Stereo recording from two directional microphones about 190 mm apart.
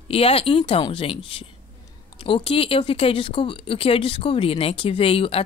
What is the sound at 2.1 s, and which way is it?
Speech, 30° left (ahead or behind).